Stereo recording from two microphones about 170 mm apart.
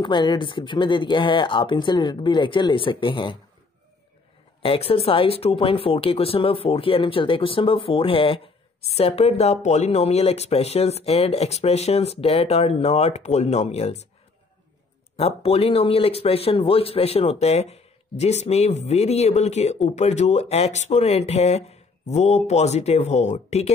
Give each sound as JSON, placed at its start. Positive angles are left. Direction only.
{"t": 0.0, "sound": "speech", "side_deg": 25}
{"t": 4.6, "sound": "speech", "side_deg": 35}
{"t": 15.1, "sound": "speech", "side_deg": 35}